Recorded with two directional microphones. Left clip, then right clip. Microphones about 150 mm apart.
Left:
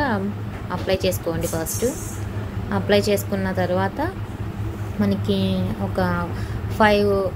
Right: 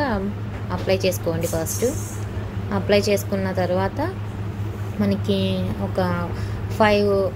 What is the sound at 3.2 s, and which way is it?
Speech, 15° right (ahead or behind).